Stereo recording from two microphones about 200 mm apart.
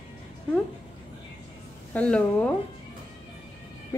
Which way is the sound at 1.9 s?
5° left (ahead or behind).